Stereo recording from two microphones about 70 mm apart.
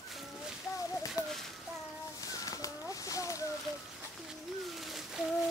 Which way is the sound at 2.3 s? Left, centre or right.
Left.